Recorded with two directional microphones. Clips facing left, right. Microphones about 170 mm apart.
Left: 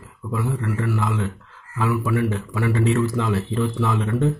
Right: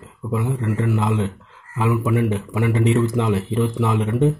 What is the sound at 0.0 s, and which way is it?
Speech, 20° right (ahead or behind).